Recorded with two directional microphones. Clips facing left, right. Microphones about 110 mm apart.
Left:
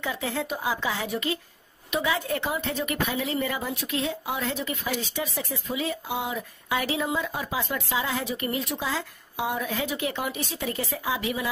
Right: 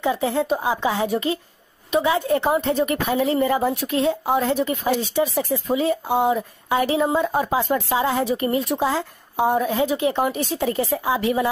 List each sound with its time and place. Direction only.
0.0 s a woman's voice: 30° right (ahead or behind)
2.4 s a woman's voice: 40° right (ahead or behind)
5.3 s a woman's voice: 40° right (ahead or behind)
10.1 s speech: 45° right (ahead or behind)
10.6 s a woman's voice: 30° right (ahead or behind)